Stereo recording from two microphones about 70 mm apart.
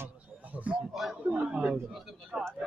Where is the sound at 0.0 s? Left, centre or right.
Right.